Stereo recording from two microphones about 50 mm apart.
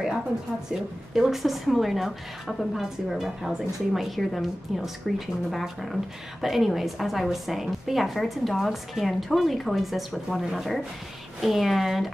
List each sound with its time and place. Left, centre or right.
0.7 s speech: centre